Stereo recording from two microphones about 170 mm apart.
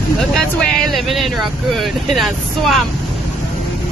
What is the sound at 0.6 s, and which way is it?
Speech, centre (ahead or behind).